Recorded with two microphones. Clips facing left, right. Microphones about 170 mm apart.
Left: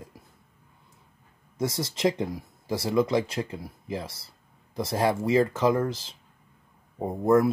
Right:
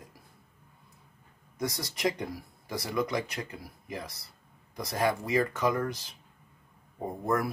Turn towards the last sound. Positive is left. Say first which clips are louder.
# left 9 dB
turn(degrees=25)  # may be behind; listen again after turning